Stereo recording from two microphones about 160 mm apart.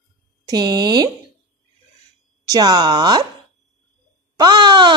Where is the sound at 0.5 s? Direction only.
25° right (ahead or behind).